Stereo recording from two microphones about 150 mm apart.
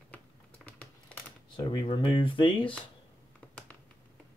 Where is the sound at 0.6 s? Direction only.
10° left (ahead or behind).